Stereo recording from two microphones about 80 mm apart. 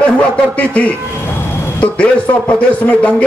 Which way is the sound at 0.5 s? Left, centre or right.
Centre.